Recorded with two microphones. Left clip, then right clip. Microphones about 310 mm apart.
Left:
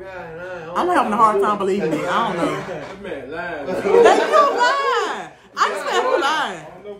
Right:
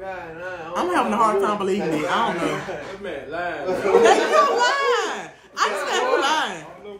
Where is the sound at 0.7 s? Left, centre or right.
Centre.